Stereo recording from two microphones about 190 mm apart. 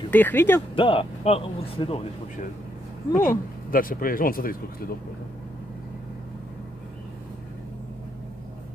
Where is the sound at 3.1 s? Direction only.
15° left (ahead or behind).